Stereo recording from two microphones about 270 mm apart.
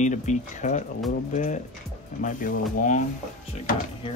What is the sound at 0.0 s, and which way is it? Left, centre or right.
Speech, left.